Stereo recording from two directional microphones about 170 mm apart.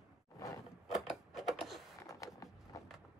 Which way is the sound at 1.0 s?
Centre (ahead or behind).